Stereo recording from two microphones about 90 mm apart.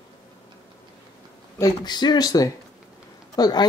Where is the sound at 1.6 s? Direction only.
50° left (ahead or behind).